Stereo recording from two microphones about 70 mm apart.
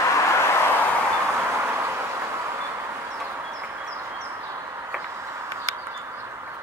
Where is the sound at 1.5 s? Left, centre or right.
Right.